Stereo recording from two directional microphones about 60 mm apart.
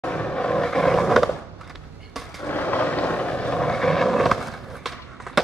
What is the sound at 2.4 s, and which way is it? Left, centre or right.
Vehicle, left.